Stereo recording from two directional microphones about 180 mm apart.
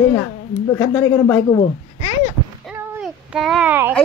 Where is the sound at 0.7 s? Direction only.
10° left (ahead or behind).